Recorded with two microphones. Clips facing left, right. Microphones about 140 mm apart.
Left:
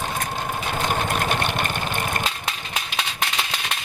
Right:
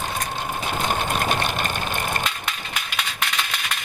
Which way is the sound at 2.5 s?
30° left (ahead or behind).